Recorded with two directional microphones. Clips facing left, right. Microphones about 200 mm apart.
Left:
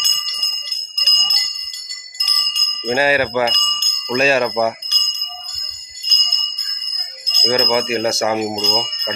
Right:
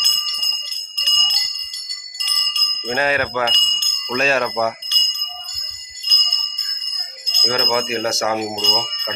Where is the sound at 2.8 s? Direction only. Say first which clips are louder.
Left 4 dB; 5° left (ahead or behind).